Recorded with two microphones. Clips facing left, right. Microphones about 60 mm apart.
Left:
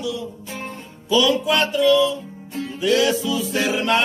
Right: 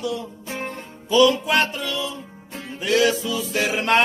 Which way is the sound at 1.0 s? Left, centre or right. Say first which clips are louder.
Right 1 dB; right.